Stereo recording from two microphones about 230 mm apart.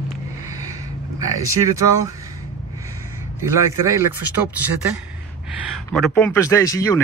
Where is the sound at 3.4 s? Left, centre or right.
Centre.